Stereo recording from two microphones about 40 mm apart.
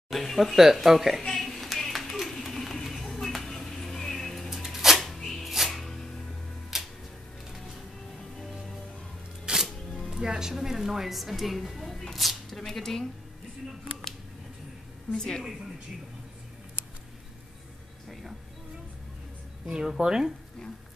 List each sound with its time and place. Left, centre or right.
0.1 s speech: centre
1.2 s a sound: centre
4.5 s a sound: centre
5.5 s music: centre
9.5 s music: right; by 12.0 s centre
12.1 s a woman's voice: centre
15.1 s a woman's voice: centre
19.7 s speech: centre